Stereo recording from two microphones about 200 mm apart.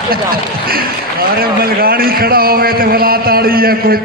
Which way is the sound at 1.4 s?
50° right (ahead or behind).